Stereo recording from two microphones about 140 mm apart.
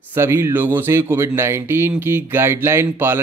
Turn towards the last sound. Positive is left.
turn(degrees=-15)  # may be behind; listen again after turning